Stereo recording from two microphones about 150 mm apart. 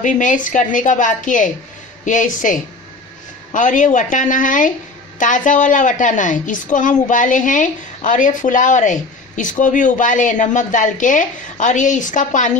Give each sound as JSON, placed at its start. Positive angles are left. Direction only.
{"t": 0.0, "sound": "a woman's voice", "side_deg": 60}